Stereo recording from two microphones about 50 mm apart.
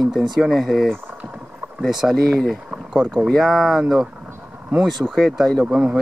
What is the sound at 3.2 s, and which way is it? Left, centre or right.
Speech, centre.